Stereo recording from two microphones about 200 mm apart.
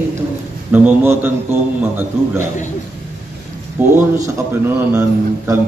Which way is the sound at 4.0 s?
15° right (ahead or behind).